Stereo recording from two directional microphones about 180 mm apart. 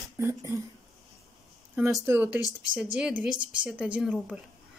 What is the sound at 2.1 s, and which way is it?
Speech, 10° right (ahead or behind).